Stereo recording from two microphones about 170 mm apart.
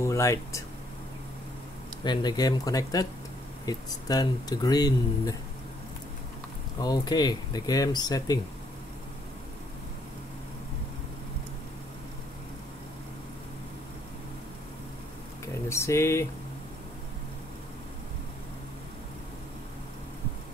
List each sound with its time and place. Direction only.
0.0 s speech: 15° left (ahead or behind)
2.0 s speech: 25° left (ahead or behind)
6.8 s speech: 25° left (ahead or behind)
15.4 s speech: 15° left (ahead or behind)